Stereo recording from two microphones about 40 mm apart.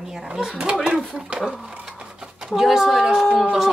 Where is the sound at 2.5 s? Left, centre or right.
Centre.